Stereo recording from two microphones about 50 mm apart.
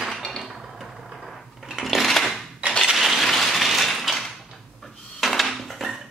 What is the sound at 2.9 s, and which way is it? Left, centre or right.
Coin, centre.